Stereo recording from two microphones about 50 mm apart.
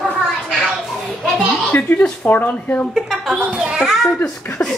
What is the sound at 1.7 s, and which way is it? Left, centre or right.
Speech, left.